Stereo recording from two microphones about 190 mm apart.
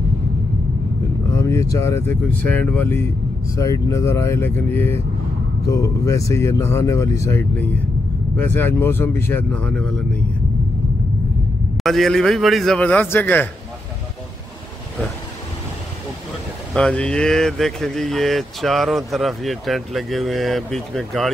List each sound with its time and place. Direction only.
1.3 s speech: 15° left (ahead or behind)
11.7 s speech: centre (ahead or behind)
16.7 s speech: 5° left (ahead or behind)